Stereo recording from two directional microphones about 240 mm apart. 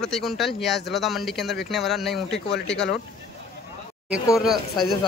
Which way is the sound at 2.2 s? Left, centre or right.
Left.